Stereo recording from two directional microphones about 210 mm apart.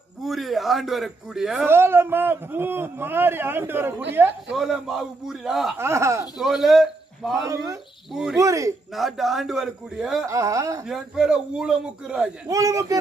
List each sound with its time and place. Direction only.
0.2 s a man's voice: centre (ahead or behind)
5.8 s a man's voice: 15° right (ahead or behind)
6.3 s a man's voice: centre (ahead or behind)
7.4 s a man's voice: 15° right (ahead or behind)
8.1 s a man's voice: centre (ahead or behind)
8.4 s a man's voice: 15° right (ahead or behind)
8.9 s a man's voice: centre (ahead or behind)
10.2 s a man's voice: 15° right (ahead or behind)
10.9 s a man's voice: centre (ahead or behind)
12.4 s a man's voice: 15° right (ahead or behind)